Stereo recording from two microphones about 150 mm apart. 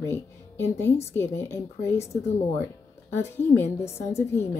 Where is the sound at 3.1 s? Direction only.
15° left (ahead or behind).